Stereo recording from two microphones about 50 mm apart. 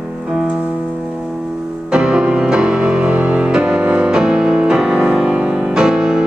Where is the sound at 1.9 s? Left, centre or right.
Centre.